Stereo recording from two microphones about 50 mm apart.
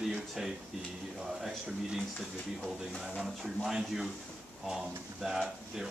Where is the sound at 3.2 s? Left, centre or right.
Centre.